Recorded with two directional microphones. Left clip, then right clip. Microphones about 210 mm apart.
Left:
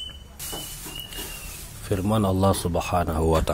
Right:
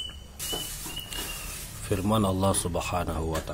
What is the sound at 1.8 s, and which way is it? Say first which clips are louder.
Speech: left 2 dB; 10° left (ahead or behind).